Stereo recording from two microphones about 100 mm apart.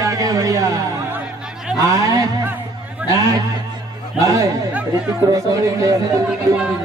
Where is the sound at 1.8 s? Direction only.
35° right (ahead or behind).